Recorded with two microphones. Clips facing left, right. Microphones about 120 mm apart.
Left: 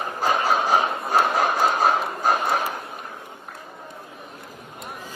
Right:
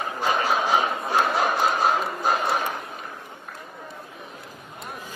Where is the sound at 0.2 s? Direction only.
40° left (ahead or behind).